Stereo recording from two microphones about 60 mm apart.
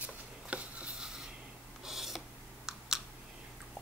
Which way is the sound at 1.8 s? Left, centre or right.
Centre.